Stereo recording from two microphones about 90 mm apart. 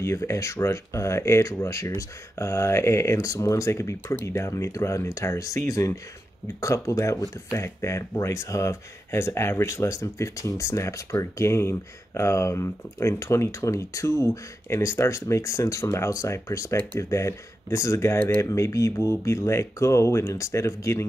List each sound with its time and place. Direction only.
0.0 s speech: 30° left (ahead or behind)